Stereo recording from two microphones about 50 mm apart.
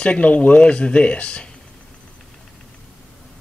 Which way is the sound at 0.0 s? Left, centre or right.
Left.